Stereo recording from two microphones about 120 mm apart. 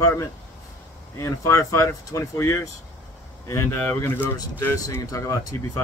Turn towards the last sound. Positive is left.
turn(degrees=30)  # may be behind; listen again after turning